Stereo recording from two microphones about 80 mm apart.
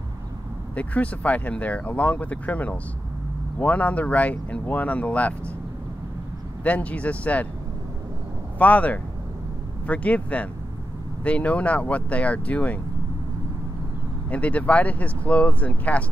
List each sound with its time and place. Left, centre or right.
0.7 s speech: centre
6.6 s speech: centre
8.5 s speech: centre
14.3 s speech: centre